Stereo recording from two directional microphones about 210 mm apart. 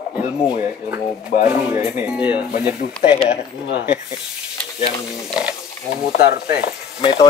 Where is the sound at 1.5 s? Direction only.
5° right (ahead or behind).